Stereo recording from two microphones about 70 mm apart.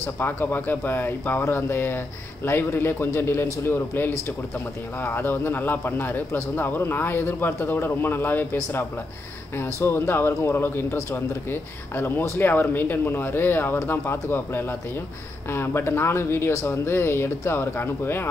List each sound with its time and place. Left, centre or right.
0.0 s a man's voice: left